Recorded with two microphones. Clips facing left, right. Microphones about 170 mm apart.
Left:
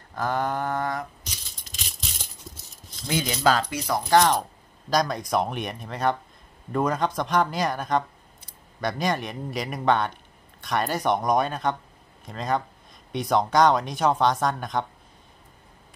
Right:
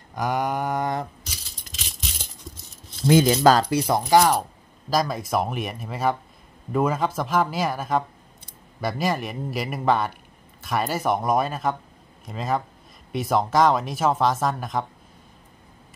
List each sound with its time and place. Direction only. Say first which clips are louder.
0.1 s a sound: right 1 dB; 15° right (ahead or behind)
1.3 s coin: right 2 dB; centre (ahead or behind)
3.1 s speech: right 7 dB; 45° right (ahead or behind)
4.1 s speech: right 1 dB; 5° right (ahead or behind)